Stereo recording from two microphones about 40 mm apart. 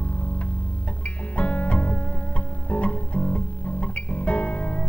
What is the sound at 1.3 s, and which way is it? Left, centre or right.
Music, left.